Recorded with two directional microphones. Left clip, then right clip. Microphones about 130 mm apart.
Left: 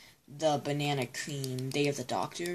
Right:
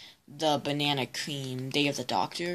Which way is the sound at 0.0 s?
20° right (ahead or behind).